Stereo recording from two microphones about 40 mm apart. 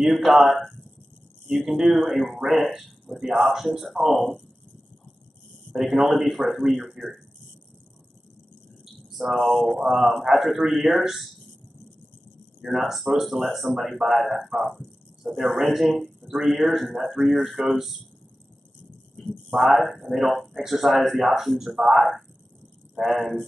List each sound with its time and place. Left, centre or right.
0.0 s speech: centre
5.8 s speech: centre
9.1 s speech: centre
12.6 s speech: centre
16.2 s speech: centre
19.1 s speech: centre